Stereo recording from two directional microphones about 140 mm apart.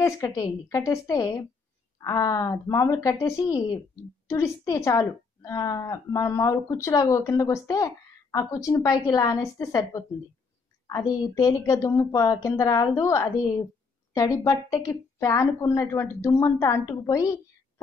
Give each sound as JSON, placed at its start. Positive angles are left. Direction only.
{"t": 0.0, "sound": "a woman's voice", "side_deg": 25}
{"t": 11.1, "sound": "a woman's voice", "side_deg": 25}